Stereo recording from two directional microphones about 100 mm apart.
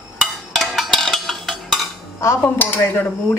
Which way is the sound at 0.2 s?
Centre (ahead or behind).